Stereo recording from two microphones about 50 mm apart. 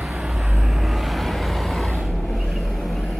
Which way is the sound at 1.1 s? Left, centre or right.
Centre.